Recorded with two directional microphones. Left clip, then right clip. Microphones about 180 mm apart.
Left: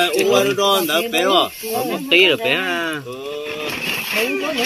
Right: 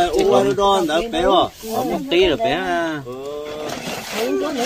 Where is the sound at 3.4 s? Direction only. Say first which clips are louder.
Left 3 dB; 55° right (ahead or behind).